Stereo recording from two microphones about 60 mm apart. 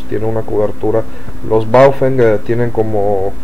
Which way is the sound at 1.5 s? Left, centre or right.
Left.